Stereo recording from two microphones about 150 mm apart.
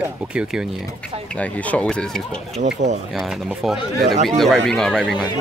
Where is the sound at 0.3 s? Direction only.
5° right (ahead or behind).